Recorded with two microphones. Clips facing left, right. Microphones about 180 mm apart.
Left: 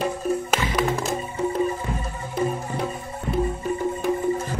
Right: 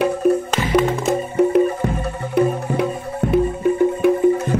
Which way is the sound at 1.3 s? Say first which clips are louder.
Right 9 dB; 65° right (ahead or behind).